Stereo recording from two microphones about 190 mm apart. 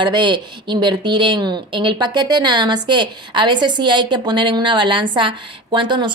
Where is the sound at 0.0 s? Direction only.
25° right (ahead or behind).